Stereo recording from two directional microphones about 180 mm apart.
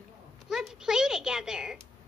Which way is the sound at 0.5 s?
5° right (ahead or behind).